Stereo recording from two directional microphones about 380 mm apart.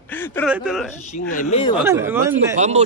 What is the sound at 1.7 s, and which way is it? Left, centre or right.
Speech, centre.